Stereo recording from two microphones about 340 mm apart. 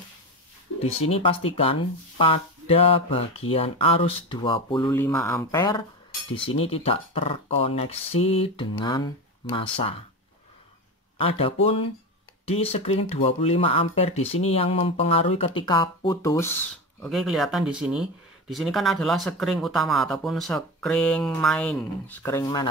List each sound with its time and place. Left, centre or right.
0.8 s speech: centre
11.1 s speech: centre